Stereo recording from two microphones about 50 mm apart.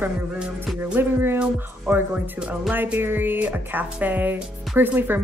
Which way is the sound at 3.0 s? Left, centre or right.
Right.